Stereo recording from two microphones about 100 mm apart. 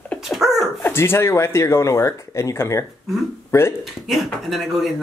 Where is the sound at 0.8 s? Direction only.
25° left (ahead or behind).